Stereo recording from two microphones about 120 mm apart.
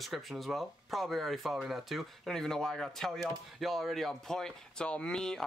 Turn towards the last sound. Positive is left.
turn(degrees=5)  # may be behind; listen again after turning